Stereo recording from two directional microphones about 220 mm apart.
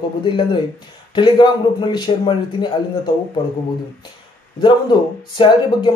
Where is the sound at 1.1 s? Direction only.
20° left (ahead or behind).